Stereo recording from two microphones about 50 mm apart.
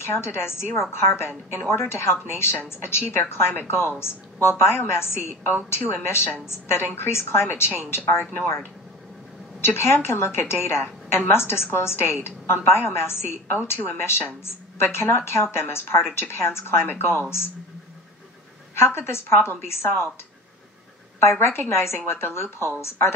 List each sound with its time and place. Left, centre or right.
0.0 s a woman's voice: left
18.8 s a woman's voice: left
21.2 s a woman's voice: left